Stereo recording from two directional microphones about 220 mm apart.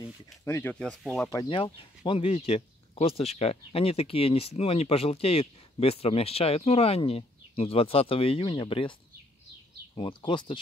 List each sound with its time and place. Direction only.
0.0 s speech: 10° left (ahead or behind)
1.3 s speech: 20° left (ahead or behind)
9.9 s speech: 20° left (ahead or behind)